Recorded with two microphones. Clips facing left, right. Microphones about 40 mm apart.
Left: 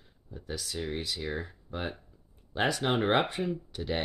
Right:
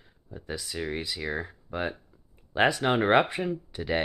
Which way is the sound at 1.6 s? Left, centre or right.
Right.